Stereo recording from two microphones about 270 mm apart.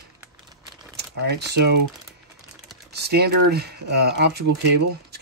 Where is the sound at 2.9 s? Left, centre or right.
Right.